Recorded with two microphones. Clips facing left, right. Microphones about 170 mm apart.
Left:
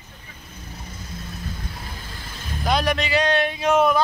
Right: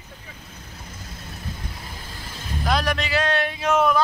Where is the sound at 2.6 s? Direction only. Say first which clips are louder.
Left 2 dB; centre (ahead or behind).